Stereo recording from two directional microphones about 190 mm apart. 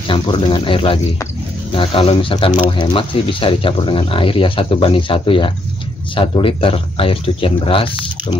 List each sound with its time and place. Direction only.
0.1 s speech: 25° left (ahead or behind)